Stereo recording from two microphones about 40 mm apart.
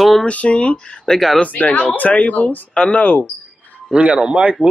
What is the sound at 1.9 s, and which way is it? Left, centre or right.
Speech, left.